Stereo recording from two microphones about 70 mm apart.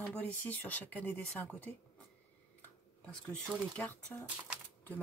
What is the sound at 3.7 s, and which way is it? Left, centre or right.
Speech, left.